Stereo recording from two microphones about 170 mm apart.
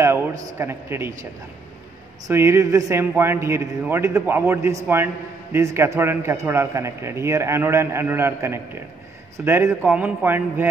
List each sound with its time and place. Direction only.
0.0 s a sound: 15° right (ahead or behind)
0.6 s a man's voice: 15° right (ahead or behind)
2.2 s a man's voice: 15° right (ahead or behind)